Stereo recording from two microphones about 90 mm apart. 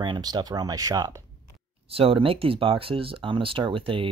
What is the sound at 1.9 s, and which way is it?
Speech, 90° right.